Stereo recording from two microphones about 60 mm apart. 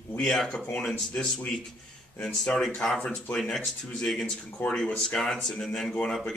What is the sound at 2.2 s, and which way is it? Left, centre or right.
A man's voice, centre.